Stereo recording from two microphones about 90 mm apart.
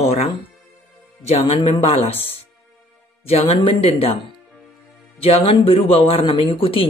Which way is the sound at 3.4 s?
85° left.